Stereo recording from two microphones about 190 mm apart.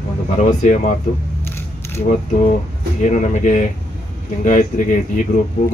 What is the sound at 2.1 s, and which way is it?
Speech, 40° left (ahead or behind).